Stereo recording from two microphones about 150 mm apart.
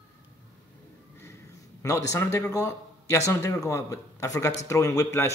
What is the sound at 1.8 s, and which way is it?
A man's voice, 20° left (ahead or behind).